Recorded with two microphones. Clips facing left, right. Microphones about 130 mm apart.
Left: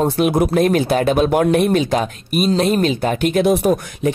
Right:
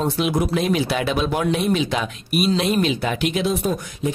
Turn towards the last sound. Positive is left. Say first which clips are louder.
# left 6 dB
turn(degrees=70)  # may be behind; listen again after turning